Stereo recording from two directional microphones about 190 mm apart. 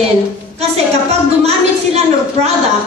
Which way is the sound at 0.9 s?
35° right (ahead or behind).